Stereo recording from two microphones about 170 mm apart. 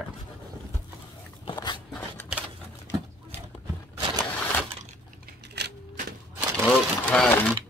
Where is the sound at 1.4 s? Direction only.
30° left (ahead or behind).